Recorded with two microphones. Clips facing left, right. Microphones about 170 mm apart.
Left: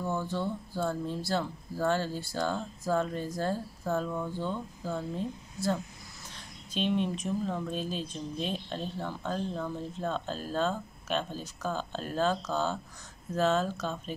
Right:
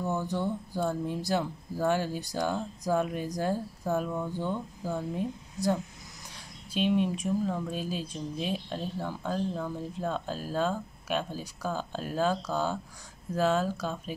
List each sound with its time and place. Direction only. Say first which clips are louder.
0.0 s speech: right 2 dB; 15° right (ahead or behind)